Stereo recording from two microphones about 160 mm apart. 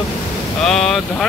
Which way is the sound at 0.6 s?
Centre (ahead or behind).